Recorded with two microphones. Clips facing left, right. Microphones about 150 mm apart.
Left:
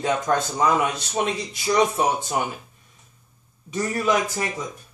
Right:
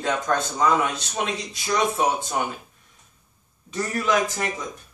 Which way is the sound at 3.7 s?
15° left (ahead or behind).